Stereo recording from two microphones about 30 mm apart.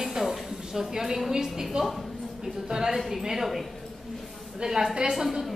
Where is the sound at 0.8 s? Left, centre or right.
Centre.